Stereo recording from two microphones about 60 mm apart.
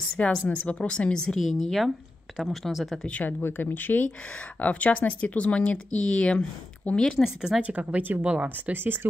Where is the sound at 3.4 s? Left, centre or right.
Left; by 7.1 s centre.